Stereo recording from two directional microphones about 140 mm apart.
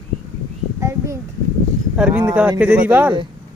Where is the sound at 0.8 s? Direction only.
20° right (ahead or behind).